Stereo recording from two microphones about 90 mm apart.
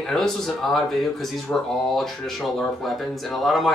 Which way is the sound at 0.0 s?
5° left (ahead or behind).